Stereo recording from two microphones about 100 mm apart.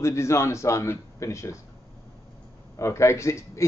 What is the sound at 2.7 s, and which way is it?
Speech, 30° left (ahead or behind).